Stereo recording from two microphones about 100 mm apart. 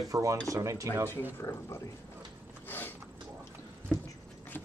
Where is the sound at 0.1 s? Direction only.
35° right (ahead or behind).